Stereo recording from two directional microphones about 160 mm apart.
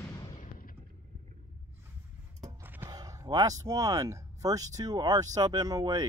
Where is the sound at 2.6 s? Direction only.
10° right (ahead or behind).